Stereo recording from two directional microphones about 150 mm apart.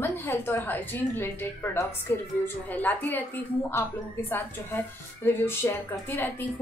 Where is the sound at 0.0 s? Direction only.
20° left (ahead or behind).